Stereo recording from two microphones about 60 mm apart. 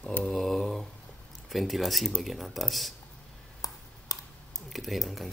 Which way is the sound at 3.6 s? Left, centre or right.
Left.